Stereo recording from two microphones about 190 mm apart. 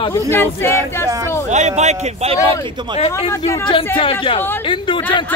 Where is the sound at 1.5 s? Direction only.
35° right (ahead or behind).